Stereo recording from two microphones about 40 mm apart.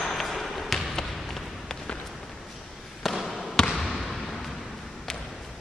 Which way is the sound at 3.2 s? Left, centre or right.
Centre.